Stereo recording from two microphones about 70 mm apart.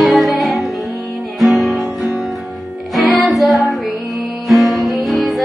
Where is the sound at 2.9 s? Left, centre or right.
Centre.